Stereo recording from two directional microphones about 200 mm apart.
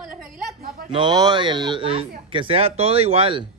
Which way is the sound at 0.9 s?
25° right (ahead or behind).